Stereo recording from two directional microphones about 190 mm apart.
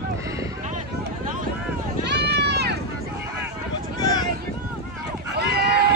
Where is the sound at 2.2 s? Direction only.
60° right (ahead or behind).